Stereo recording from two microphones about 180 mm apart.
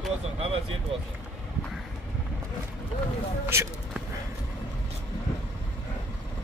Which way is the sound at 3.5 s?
15° right (ahead or behind).